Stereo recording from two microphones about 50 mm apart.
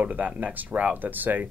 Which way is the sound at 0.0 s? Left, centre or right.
Right.